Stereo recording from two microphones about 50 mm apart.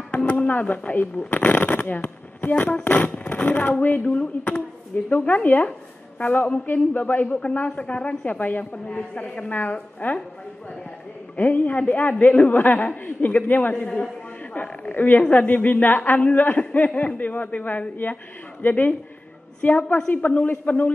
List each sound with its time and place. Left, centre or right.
0.1 s a sound: left
0.5 s a woman's voice: left
5.1 s a woman's voice: left
7.6 s speech: left
8.4 s a woman's voice: left
8.8 s a woman's voice: left
11.3 s a woman's voice: left